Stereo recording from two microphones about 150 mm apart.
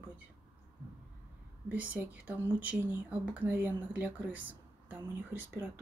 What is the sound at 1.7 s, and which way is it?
Speech, 10° right (ahead or behind).